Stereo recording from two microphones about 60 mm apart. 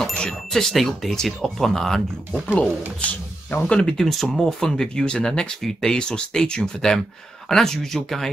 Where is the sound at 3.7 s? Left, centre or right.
Centre.